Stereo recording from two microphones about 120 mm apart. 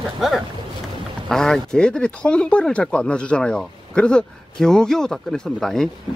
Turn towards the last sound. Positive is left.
turn(degrees=5)  # may be behind; listen again after turning